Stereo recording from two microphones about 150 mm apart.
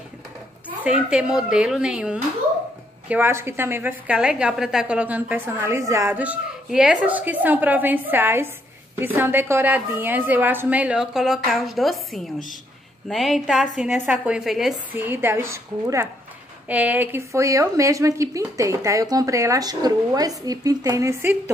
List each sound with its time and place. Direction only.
0.8 s a woman's voice: 5° right (ahead or behind); by 6.1 s 20° right (ahead or behind)
6.1 s a woman's voice: 10° right (ahead or behind)
15.0 s a woman's voice: 15° right (ahead or behind)